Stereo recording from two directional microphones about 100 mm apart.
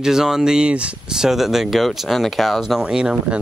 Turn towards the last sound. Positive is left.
turn(degrees=-5)  # may be behind; listen again after turning